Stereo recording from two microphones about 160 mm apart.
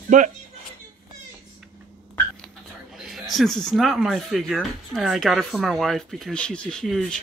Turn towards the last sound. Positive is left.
turn(degrees=0)  # may be behind; listen again after turning